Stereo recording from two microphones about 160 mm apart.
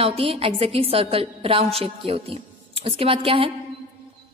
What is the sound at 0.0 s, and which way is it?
A woman's voice, 35° right (ahead or behind).